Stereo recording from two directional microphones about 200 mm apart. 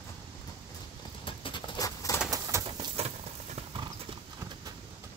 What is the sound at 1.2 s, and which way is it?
Patter, 25° left (ahead or behind).